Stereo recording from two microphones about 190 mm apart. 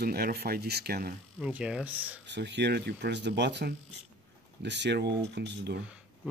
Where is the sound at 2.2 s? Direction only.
65° right (ahead or behind).